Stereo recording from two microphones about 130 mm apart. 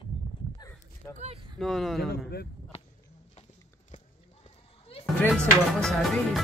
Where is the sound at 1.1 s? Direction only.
55° right (ahead or behind).